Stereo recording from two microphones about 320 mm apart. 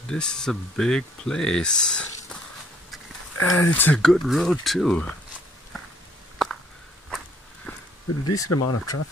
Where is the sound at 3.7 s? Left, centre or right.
Centre.